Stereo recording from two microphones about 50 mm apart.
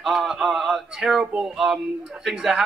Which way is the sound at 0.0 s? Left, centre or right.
Centre.